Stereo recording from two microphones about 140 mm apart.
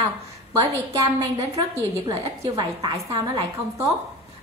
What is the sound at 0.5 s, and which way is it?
A woman's voice, 30° right (ahead or behind).